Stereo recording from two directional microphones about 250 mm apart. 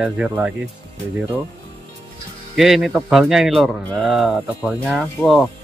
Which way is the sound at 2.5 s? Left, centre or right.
Centre.